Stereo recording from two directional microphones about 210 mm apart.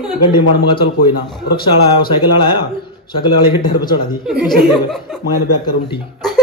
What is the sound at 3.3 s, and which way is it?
Speech, 20° left (ahead or behind).